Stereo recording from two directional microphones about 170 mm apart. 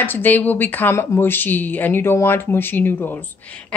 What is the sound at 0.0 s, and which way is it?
Speech, 10° left (ahead or behind).